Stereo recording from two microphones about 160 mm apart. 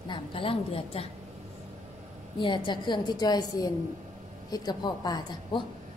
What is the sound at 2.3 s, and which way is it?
A woman's voice, 30° left (ahead or behind).